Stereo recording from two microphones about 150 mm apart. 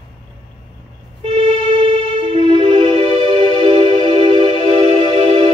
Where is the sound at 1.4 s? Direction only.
40° right (ahead or behind).